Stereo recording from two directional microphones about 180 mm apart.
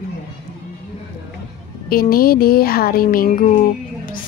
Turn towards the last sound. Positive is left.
turn(degrees=45)  # may be behind; listen again after turning